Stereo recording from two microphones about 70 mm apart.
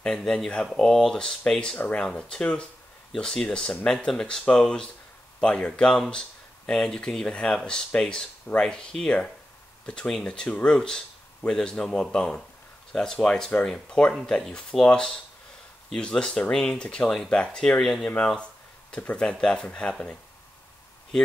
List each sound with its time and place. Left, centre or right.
0.0 s speech: centre
17.7 s speech: centre